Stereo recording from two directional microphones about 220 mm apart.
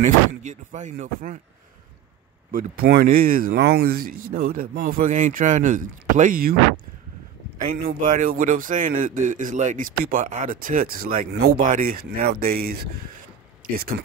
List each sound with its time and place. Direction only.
0.0 s a man's voice: 35° right (ahead or behind)
2.5 s a man's voice: 40° right (ahead or behind)
7.6 s a man's voice: 35° right (ahead or behind)